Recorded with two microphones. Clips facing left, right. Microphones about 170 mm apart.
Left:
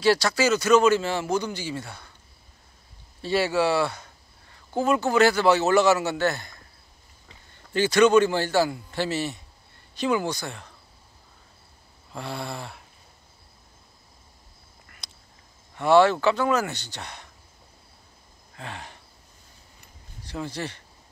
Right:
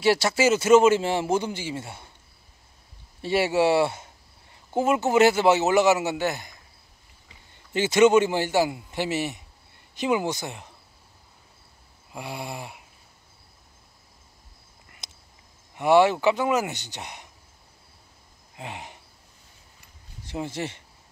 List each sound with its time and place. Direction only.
0.0 s speech: 25° right (ahead or behind)
3.2 s speech: 25° right (ahead or behind)
7.5 s a man's voice: 20° right (ahead or behind)
12.1 s a man's voice: 10° right (ahead or behind)
15.0 s duck: 20° right (ahead or behind)
15.7 s a man's voice: 15° right (ahead or behind)
18.5 s a sound: 15° right (ahead or behind)
20.2 s speech: 20° right (ahead or behind)